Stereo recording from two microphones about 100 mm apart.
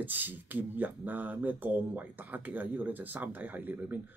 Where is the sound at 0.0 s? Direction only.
20° right (ahead or behind).